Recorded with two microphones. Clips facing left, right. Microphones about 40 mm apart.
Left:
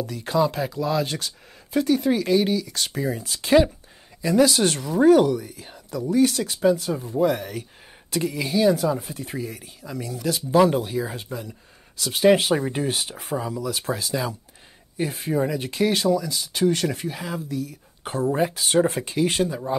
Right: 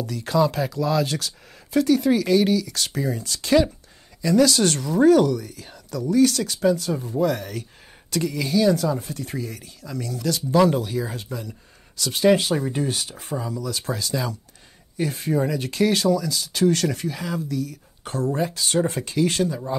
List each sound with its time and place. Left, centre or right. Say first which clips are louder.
0.0 s speech: right 1 dB; centre
6.9 s speech: right 1 dB; centre
7.2 s speech: left 2 dB; centre